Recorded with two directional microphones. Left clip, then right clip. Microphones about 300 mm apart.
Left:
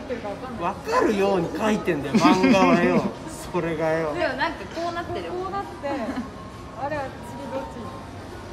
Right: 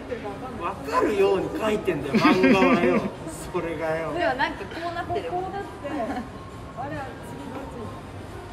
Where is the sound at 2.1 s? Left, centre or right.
Centre.